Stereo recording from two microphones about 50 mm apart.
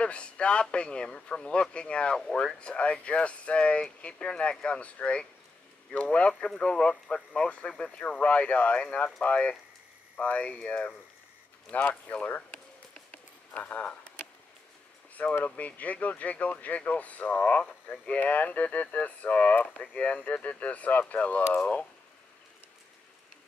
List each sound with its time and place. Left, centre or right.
0.0 s speech: left
6.4 s speech: centre; by 8.7 s left
8.7 s speech: centre
13.1 s a sound: left
15.4 s speech: left